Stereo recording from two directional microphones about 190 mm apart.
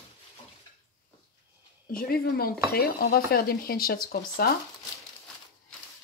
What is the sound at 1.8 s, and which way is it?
Speech, 50° left (ahead or behind).